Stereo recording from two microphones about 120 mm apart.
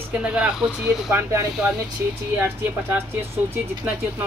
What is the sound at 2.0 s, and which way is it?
Speech, 20° right (ahead or behind).